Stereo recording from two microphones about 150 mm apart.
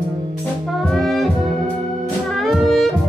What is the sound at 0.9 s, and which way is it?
Brass instrument, centre (ahead or behind).